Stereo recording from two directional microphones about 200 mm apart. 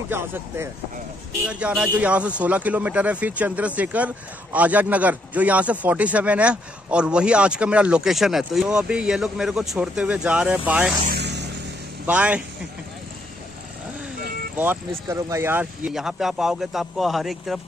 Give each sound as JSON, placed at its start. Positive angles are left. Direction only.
{"t": 0.1, "sound": "speech", "side_deg": -10}
{"t": 11.1, "sound": "vehicle", "side_deg": -55}
{"t": 12.1, "sound": "speech", "side_deg": -5}
{"t": 14.6, "sound": "speech", "side_deg": -10}